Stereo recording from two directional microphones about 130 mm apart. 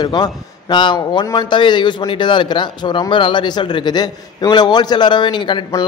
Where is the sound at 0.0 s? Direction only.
35° left (ahead or behind).